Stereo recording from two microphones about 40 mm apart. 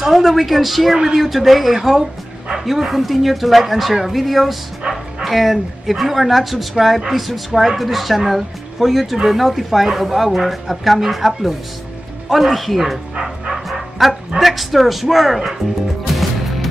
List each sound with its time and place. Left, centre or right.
0.0 s a woman's voice: centre
4.9 s bow-wow: right
5.2 s a woman's voice: centre
13.1 s bow-wow: centre
13.7 s speech: centre